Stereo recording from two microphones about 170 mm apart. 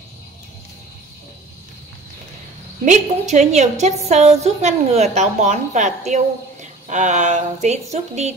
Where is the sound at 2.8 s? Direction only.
45° right (ahead or behind).